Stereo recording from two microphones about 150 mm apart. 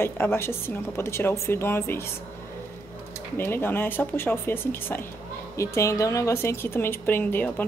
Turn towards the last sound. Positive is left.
turn(degrees=10)  # may be behind; listen again after turning